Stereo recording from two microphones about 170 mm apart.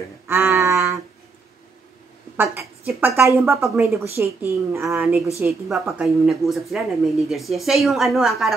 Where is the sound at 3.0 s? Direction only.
15° right (ahead or behind).